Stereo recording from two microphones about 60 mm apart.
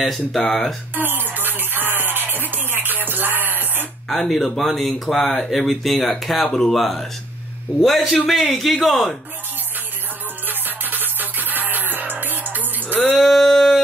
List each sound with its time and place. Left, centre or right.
0.0 s speech: centre
0.4 s speech: centre
0.9 s music: right
4.1 s speech: centre
10.4 s music: right
13.2 s speech: centre